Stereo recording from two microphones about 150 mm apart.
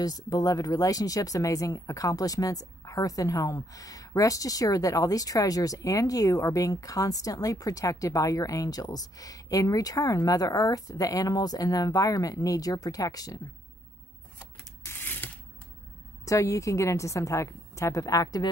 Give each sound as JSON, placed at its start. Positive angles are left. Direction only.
{"t": 0.0, "sound": "speech", "side_deg": 25}
{"t": 14.9, "sound": "a sound", "side_deg": 15}
{"t": 16.3, "sound": "speech", "side_deg": 20}